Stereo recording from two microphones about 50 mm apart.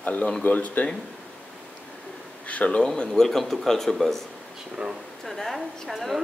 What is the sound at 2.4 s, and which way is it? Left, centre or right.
Speech, left.